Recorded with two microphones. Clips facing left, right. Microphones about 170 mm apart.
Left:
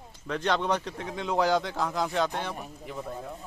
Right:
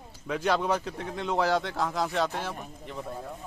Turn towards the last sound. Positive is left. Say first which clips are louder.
# left 1 dB
turn(degrees=0)  # may be behind; listen again after turning